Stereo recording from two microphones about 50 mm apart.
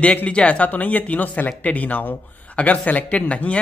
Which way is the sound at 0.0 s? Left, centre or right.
Left.